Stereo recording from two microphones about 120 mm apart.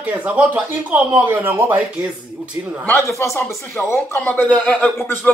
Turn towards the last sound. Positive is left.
turn(degrees=15)  # may be behind; listen again after turning